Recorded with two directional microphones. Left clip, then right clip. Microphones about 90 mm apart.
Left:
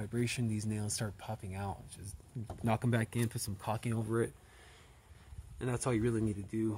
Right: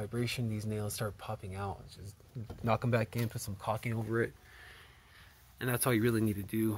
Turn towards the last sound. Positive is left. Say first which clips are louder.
# right 2 dB
turn(degrees=-35)  # may be behind; listen again after turning